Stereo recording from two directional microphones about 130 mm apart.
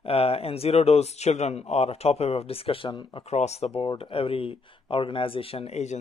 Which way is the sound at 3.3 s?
55° left (ahead or behind).